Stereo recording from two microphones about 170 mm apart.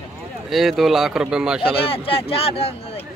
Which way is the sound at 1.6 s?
35° left (ahead or behind).